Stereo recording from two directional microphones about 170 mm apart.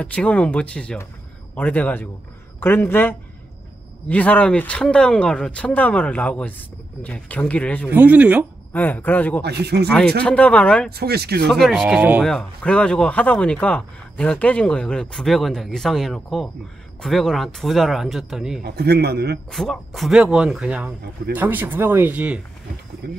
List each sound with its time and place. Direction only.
0.0 s speech: 5° left (ahead or behind)
7.9 s speech: 10° right (ahead or behind)
8.7 s speech: 10° left (ahead or behind)
9.4 s a man's voice: 75° right (ahead or behind)
9.8 s speech: 5° left (ahead or behind)
10.9 s a man's voice: 70° right (ahead or behind)
11.4 s speech: centre (ahead or behind)
12.0 s speech: 10° right (ahead or behind)
12.3 s speech: 5° left (ahead or behind)
18.6 s a man's voice: 70° right (ahead or behind)
19.5 s speech: centre (ahead or behind)
23.0 s a man's voice: 70° right (ahead or behind)